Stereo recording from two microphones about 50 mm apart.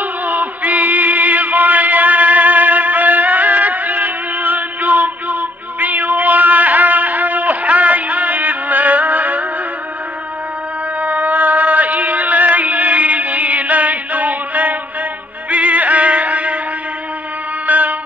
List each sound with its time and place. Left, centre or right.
0.3 s a sound: right
11.0 s music: right
17.6 s music: right